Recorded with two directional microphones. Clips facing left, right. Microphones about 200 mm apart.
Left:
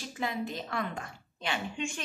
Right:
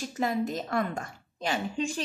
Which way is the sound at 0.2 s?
45° right (ahead or behind).